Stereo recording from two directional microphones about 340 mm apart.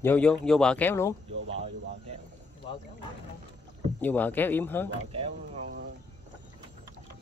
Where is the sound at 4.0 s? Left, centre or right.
Centre.